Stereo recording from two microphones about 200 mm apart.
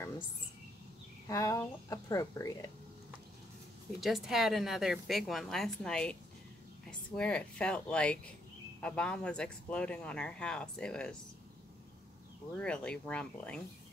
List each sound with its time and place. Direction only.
1.2 s speech: 15° left (ahead or behind)
4.0 s speech: centre (ahead or behind)
12.5 s speech: 5° left (ahead or behind)